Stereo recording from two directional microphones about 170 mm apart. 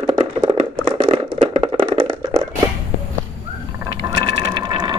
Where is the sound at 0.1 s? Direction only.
25° right (ahead or behind).